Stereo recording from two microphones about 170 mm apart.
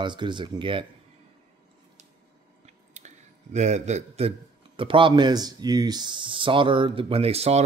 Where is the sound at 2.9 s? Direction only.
40° right (ahead or behind).